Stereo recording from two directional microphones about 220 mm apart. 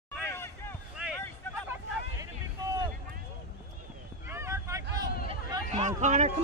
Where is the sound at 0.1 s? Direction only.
10° left (ahead or behind).